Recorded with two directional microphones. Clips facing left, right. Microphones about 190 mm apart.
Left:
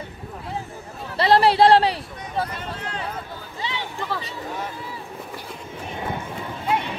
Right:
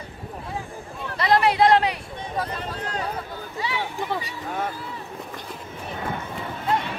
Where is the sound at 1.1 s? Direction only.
30° left (ahead or behind).